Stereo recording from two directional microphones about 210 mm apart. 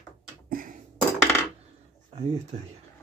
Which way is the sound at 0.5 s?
40° right (ahead or behind).